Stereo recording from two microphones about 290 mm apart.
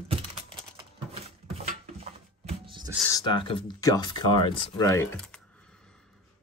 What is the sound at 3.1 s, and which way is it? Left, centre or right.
Speech, centre.